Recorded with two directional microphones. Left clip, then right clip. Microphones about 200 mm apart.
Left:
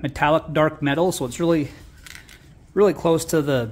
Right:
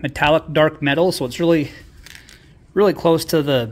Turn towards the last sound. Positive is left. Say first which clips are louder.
# right 3 dB
turn(degrees=-5)  # may be behind; listen again after turning